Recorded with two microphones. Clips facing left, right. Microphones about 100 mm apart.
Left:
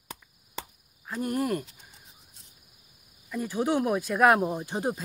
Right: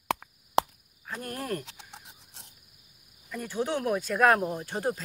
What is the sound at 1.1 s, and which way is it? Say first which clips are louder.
Speech: left 6 dB; 15° left (ahead or behind).